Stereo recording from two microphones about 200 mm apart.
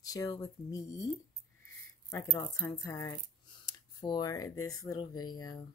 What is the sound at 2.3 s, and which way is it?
Speech, 15° left (ahead or behind).